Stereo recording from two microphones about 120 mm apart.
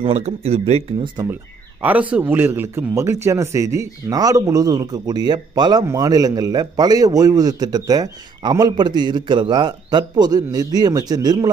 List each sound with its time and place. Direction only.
0.0 s speech: 60° right (ahead or behind)
1.3 s a man's voice: 15° right (ahead or behind); by 11.5 s 35° right (ahead or behind)